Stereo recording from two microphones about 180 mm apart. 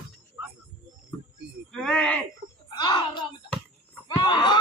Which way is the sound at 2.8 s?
25° left (ahead or behind).